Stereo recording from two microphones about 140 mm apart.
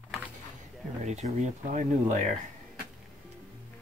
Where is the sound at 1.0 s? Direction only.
55° right (ahead or behind).